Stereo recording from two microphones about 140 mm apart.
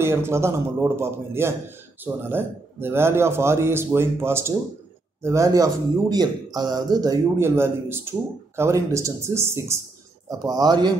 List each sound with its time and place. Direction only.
0.0 s a man's voice: 15° right (ahead or behind)